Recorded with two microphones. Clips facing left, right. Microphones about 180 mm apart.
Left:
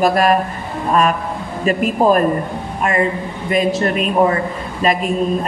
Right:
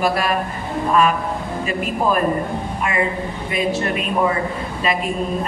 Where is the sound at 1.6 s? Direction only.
40° left (ahead or behind).